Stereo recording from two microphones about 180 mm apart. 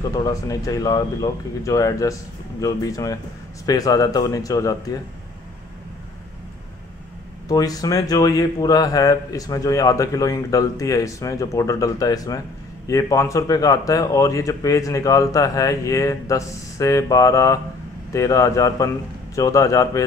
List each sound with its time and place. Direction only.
0.1 s speech: 20° left (ahead or behind)
7.4 s speech: 20° left (ahead or behind)